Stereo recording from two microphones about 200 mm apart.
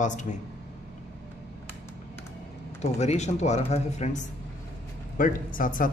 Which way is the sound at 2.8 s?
35° left (ahead or behind).